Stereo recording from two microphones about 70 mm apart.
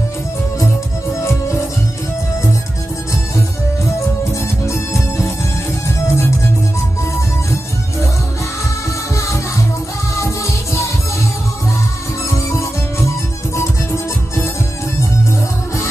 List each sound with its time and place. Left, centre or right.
1.2 s music: left
4.3 s music: left
9.1 s music: left
12.3 s music: left